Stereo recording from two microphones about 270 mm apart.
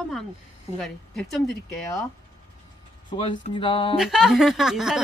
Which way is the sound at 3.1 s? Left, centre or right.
Centre.